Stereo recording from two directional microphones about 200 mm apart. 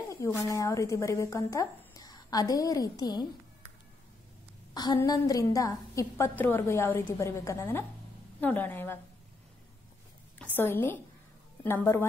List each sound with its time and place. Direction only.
0.1 s speech: 15° left (ahead or behind)
4.7 s a woman's voice: 20° left (ahead or behind)
10.4 s a woman's voice: 10° left (ahead or behind)